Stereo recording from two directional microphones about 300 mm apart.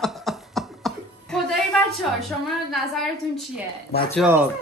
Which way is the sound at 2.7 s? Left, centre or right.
Centre.